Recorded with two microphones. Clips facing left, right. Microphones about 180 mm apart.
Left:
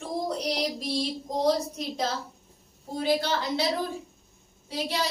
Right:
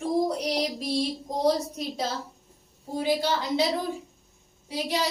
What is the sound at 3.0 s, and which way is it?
Speech, 10° right (ahead or behind).